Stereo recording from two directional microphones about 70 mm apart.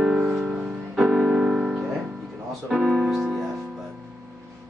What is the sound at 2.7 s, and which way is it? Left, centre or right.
Speech, centre.